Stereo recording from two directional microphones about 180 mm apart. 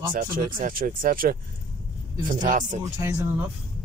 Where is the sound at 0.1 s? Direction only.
50° right (ahead or behind).